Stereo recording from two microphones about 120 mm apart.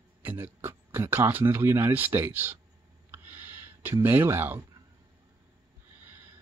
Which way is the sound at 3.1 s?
15° right (ahead or behind).